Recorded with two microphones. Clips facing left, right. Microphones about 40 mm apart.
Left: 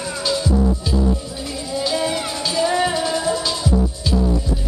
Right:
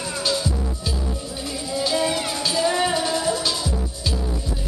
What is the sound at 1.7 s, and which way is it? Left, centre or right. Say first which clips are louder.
Music: left 1 dB; centre.